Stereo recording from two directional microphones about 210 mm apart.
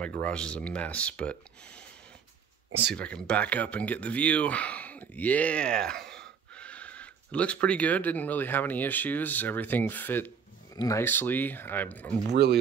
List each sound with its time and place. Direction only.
0.0 s speech: 5° left (ahead or behind)
3.0 s speech: 5° left (ahead or behind)
12.3 s speech: 50° right (ahead or behind)